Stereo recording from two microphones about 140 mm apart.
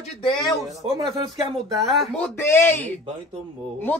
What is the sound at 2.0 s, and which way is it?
Speech, 10° left (ahead or behind).